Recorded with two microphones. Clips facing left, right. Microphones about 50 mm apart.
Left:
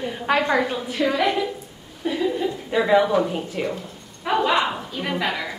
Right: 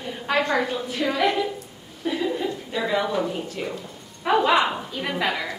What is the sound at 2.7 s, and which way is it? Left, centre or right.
Speech, left.